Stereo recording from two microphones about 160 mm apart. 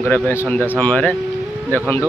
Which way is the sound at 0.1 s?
15° left (ahead or behind).